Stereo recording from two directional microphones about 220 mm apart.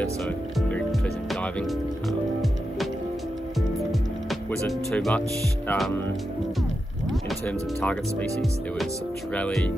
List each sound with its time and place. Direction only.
0.2 s speech: 5° left (ahead or behind)
4.3 s speech: 5° left (ahead or behind)
7.1 s speech: 5° left (ahead or behind)